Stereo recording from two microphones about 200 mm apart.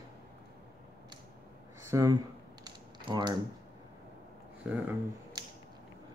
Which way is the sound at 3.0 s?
20° right (ahead or behind).